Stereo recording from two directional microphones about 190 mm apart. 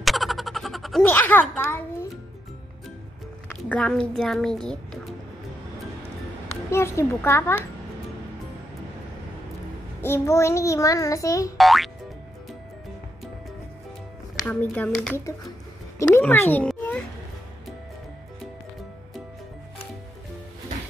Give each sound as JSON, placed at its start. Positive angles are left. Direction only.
{"t": 0.0, "sound": "a sound", "side_deg": 0}
{"t": 1.0, "sound": "child singing", "side_deg": 10}
{"t": 3.6, "sound": "a woman's voice", "side_deg": 5}
{"t": 6.7, "sound": "child singing", "side_deg": 15}
{"t": 10.0, "sound": "child singing", "side_deg": 15}
{"t": 11.5, "sound": "music", "side_deg": 0}
{"t": 14.4, "sound": "child singing", "side_deg": 10}
{"t": 16.0, "sound": "a child's voice", "side_deg": 10}